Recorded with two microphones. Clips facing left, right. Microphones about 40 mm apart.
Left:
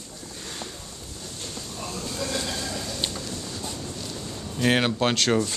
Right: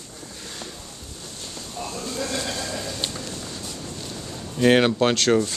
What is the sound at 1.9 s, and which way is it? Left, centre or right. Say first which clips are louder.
Sheep: right 1 dB; centre.